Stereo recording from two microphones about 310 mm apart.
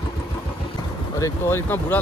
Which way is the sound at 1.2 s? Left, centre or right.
Centre.